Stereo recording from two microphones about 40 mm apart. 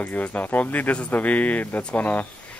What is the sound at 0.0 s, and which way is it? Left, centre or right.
Speech, left.